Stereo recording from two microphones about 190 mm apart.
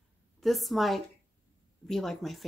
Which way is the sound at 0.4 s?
Centre (ahead or behind).